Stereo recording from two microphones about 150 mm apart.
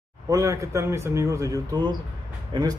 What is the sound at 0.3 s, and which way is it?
A man's voice, 20° right (ahead or behind).